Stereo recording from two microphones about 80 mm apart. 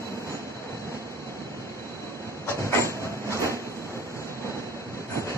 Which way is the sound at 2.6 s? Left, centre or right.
Left.